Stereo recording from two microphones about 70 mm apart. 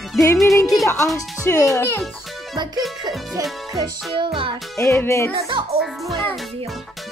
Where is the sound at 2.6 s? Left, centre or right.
Right.